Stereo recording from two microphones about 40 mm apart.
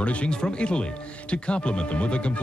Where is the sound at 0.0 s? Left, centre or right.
Left.